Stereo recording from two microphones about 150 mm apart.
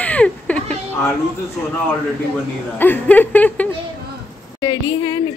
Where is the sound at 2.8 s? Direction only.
10° left (ahead or behind).